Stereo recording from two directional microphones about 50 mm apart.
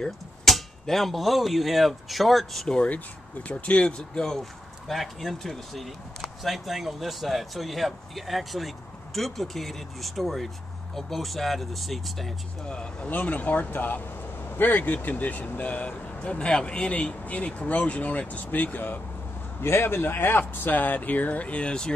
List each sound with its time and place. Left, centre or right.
0.0 s speech: centre
3.4 s speech: left; by 12.4 s centre
12.6 s speech: left
13.1 s speech: left
19.6 s speech: left; by 21.9 s centre